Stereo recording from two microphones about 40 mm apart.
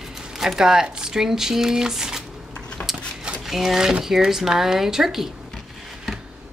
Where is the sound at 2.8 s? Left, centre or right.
Left.